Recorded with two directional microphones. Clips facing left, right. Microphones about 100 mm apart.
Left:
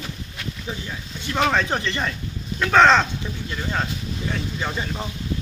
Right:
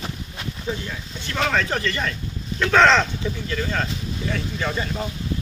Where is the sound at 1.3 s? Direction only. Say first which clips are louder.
Left 2 dB; 20° left (ahead or behind).